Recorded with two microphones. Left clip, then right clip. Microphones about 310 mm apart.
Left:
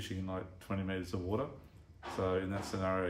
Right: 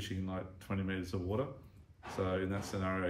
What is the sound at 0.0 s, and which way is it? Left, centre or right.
Speech, centre.